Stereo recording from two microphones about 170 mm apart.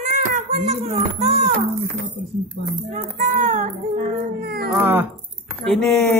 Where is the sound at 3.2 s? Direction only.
45° right (ahead or behind).